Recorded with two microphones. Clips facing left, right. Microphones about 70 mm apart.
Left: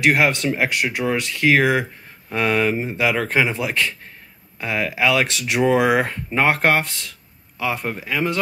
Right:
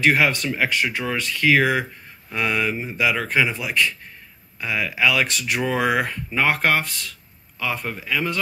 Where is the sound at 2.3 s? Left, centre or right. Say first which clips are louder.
Left 4 dB; left.